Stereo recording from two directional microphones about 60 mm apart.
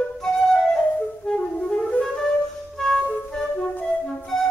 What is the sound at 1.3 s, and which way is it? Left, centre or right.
Music, centre.